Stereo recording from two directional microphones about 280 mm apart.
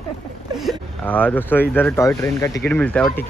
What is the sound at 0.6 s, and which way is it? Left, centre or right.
Speech, centre.